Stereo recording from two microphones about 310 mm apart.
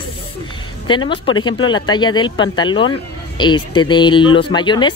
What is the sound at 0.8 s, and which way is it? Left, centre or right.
Speech, centre.